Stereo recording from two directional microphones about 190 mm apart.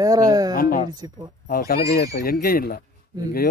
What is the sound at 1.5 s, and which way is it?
Speech, 50° left (ahead or behind).